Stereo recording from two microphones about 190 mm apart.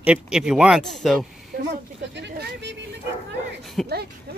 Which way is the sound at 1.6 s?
65° right (ahead or behind).